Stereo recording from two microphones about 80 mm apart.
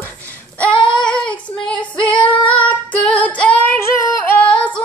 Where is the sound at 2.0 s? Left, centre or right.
Centre.